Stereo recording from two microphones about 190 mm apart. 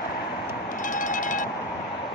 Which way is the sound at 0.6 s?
45° left (ahead or behind).